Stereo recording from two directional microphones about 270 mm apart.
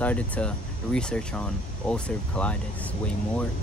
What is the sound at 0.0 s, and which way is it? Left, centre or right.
Speech, centre.